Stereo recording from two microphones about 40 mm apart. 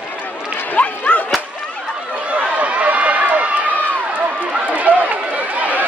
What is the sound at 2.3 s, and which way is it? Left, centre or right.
Run, right.